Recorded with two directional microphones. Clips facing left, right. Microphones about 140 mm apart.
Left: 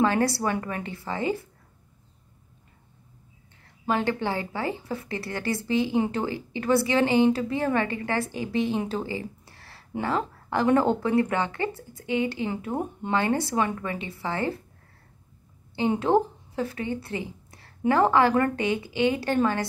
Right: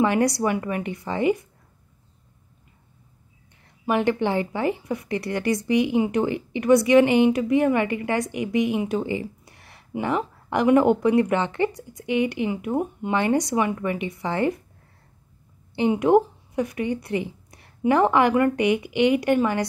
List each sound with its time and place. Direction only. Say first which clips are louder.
0.0 s a woman's voice: right 3 dB; 15° right (ahead or behind)
3.6 s a woman's voice: right 4 dB; 20° right (ahead or behind)
15.7 s speech: right 4 dB; 15° right (ahead or behind)